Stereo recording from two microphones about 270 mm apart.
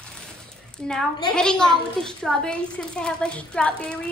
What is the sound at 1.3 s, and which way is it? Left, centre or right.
A woman's voice, centre.